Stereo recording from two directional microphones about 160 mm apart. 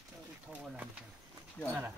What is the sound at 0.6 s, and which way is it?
Speech, 10° right (ahead or behind).